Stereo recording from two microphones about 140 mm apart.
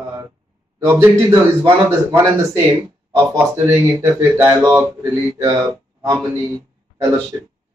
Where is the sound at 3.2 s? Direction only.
20° right (ahead or behind).